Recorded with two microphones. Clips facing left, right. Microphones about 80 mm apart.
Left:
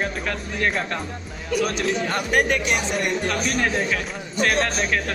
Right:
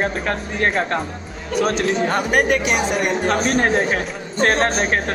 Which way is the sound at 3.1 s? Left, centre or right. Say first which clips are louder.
Right 5 dB; right.